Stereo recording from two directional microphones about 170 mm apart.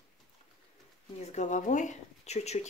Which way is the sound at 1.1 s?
40° left (ahead or behind).